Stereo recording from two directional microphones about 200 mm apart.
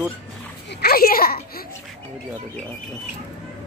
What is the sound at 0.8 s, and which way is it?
Speech, 50° left (ahead or behind).